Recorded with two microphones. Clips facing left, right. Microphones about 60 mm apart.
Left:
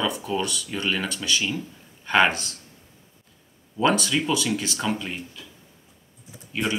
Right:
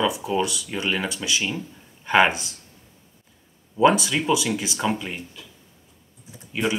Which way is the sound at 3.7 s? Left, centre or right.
Centre.